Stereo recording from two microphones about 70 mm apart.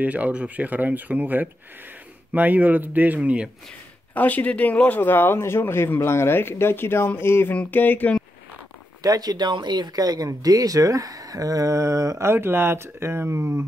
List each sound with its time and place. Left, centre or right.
0.0 s speech: right
4.1 s speech: left
7.5 s a sound: left
9.0 s speech: right